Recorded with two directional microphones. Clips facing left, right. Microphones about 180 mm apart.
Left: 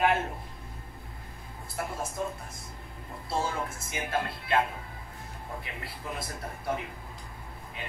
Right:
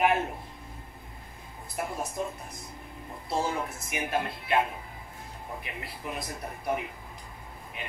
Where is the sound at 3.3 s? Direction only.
20° right (ahead or behind).